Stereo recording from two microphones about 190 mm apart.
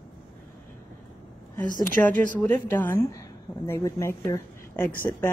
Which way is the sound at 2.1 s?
45° right (ahead or behind).